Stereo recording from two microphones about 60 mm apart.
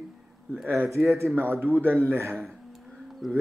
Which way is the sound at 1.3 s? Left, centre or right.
Right.